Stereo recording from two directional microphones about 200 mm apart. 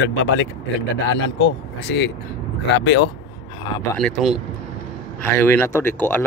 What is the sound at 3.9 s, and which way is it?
Speech, centre (ahead or behind).